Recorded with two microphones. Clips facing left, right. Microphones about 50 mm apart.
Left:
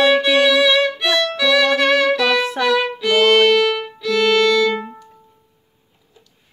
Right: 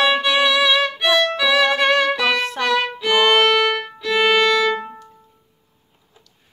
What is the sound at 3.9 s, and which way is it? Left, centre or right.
Violin, centre.